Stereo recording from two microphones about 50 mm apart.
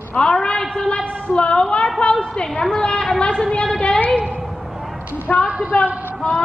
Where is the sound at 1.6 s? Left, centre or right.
Centre.